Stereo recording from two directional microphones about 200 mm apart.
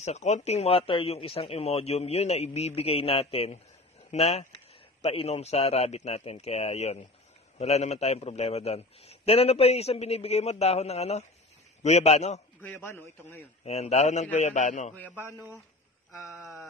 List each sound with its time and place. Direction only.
0.0 s a man's voice: 35° left (ahead or behind)
12.6 s a man's voice: 10° left (ahead or behind)
13.7 s a man's voice: 30° left (ahead or behind)
15.3 s speech: 10° right (ahead or behind)
16.3 s a sound: centre (ahead or behind)